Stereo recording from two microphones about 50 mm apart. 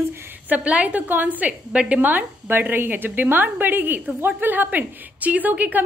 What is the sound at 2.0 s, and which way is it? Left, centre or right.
A woman's voice, right.